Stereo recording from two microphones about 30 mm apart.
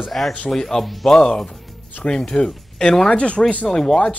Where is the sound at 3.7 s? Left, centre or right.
Left.